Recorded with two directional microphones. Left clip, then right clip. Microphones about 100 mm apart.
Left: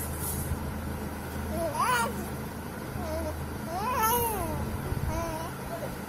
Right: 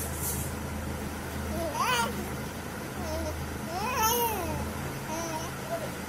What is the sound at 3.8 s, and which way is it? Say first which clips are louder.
Babbling: left 1 dB; 15° left (ahead or behind).